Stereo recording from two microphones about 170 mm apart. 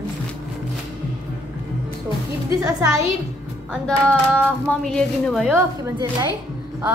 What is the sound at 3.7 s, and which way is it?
A woman's voice, 5° left (ahead or behind).